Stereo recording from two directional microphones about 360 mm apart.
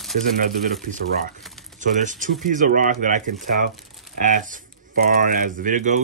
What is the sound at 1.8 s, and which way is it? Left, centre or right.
Speech, right.